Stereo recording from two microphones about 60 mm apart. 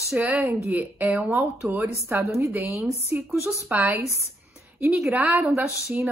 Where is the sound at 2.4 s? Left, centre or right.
Right.